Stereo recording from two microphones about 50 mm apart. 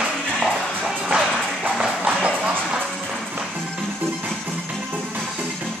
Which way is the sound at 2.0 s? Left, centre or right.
Right.